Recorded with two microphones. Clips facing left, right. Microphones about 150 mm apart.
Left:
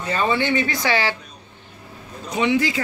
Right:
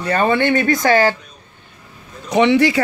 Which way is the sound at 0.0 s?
55° right (ahead or behind).